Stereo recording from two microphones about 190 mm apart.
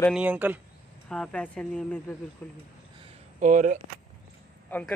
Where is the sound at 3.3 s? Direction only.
40° right (ahead or behind).